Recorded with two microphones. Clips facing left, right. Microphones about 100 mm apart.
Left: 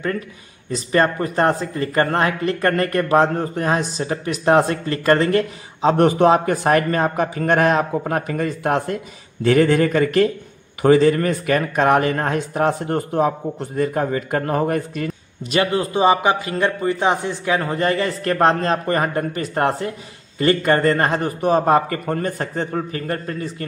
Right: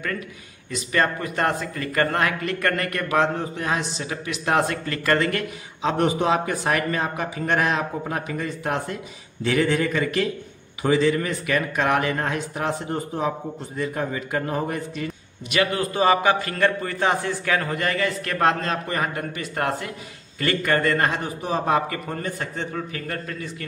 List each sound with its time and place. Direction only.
0.7 s a man's voice: 35° left (ahead or behind)
6.0 s a man's voice: 50° left (ahead or behind)
15.5 s a man's voice: 30° left (ahead or behind)
21.2 s a man's voice: 55° left (ahead or behind); by 23.5 s 35° left (ahead or behind)